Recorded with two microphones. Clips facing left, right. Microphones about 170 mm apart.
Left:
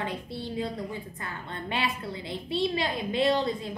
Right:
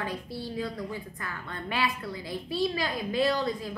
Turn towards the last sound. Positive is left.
turn(degrees=25)  # may be behind; listen again after turning